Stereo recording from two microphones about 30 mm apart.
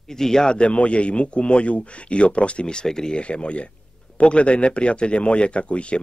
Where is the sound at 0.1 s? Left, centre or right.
Centre.